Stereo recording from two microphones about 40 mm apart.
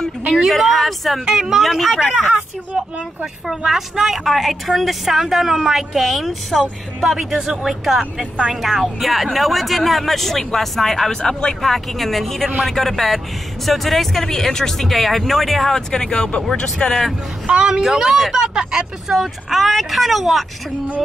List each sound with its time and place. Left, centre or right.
0.5 s speech: centre
1.9 s speech: centre
2.7 s speech: right
3.4 s speech: centre
9.0 s speech: centre
15.9 s speech: centre
17.5 s a woman's voice: right
17.9 s speech: centre